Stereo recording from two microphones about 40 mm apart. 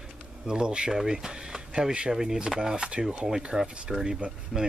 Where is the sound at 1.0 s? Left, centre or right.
Centre.